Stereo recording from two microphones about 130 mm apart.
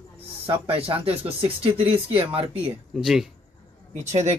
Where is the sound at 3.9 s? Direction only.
60° right (ahead or behind).